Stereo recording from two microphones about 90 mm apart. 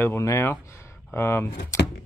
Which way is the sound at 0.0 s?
30° left (ahead or behind).